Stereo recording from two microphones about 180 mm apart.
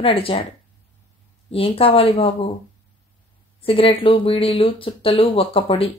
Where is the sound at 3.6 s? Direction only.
30° left (ahead or behind).